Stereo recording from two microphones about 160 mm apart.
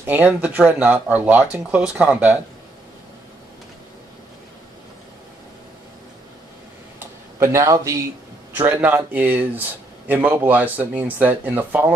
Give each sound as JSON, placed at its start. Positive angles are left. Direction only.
{"t": 0.0, "sound": "speech", "side_deg": -10}
{"t": 7.3, "sound": "a man's voice", "side_deg": -20}